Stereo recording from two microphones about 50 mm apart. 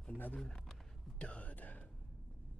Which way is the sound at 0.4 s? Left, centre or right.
Centre.